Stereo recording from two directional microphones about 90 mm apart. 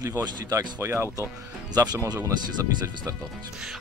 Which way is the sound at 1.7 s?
45° right (ahead or behind).